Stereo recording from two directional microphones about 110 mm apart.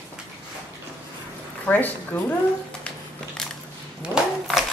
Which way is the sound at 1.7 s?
15° left (ahead or behind).